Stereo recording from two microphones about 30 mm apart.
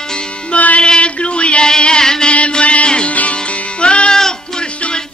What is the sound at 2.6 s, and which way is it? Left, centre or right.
Music, left.